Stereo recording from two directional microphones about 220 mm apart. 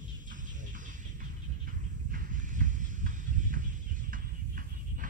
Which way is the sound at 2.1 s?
35° right (ahead or behind).